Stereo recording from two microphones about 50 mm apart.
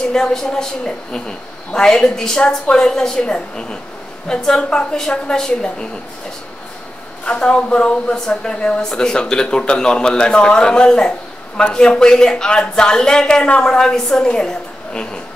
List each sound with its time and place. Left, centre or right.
0.1 s speech: centre
7.2 s speech: centre